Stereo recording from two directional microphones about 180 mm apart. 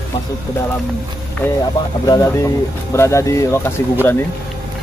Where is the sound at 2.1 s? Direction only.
20° left (ahead or behind).